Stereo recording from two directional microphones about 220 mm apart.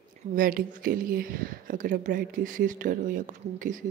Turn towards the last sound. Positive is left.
turn(degrees=-35)  # may be behind; listen again after turning